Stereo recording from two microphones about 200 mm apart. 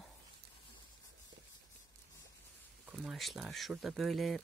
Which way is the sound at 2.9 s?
Centre (ahead or behind).